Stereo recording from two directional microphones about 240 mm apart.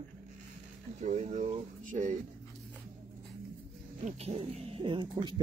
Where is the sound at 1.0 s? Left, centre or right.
Right.